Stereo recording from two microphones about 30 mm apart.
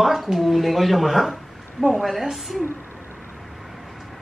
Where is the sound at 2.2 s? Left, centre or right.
Centre.